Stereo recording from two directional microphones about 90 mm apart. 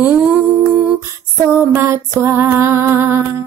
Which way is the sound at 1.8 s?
30° right (ahead or behind).